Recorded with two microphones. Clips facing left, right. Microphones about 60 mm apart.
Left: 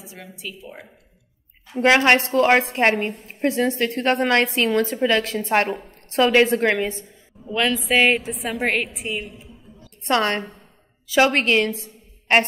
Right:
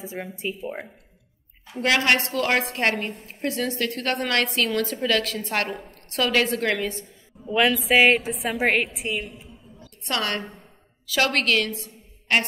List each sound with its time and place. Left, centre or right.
0.0 s speech: right
1.8 s a woman's voice: left
7.4 s a woman's voice: centre
10.0 s a woman's voice: left